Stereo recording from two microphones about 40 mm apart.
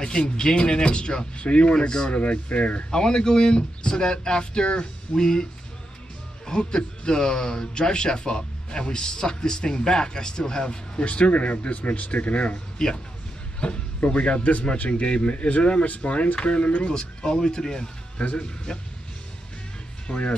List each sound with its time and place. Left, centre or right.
0.0 s a man's voice: centre
2.9 s a man's voice: centre
18.1 s speech: left
18.7 s music: centre
20.1 s speech: left